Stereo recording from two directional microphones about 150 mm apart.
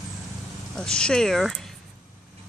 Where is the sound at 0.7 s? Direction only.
5° left (ahead or behind).